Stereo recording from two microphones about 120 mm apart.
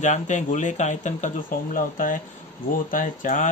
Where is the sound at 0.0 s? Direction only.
85° left.